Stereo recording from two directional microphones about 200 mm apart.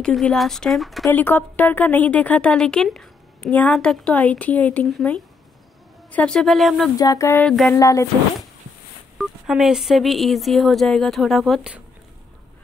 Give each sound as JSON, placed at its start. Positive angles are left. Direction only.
{"t": 0.0, "sound": "a woman's voice", "side_deg": 5}
{"t": 7.0, "sound": "a woman's voice", "side_deg": 15}
{"t": 9.2, "sound": "speech", "side_deg": 0}